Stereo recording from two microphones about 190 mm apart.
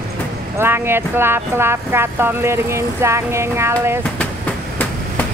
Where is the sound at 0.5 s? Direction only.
10° right (ahead or behind).